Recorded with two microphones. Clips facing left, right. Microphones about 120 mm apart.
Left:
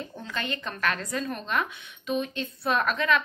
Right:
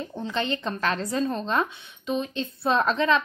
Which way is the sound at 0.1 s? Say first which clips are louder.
Right 6 dB; 25° right (ahead or behind).